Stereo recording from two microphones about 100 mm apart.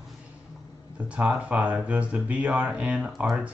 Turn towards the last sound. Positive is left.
turn(degrees=-10)  # may be behind; listen again after turning